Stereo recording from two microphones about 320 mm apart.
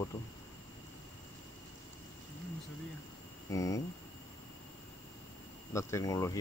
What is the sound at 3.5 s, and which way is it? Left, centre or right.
Speech, centre.